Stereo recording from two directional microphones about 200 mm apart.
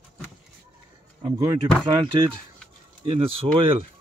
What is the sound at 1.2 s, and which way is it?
Speech, 20° right (ahead or behind).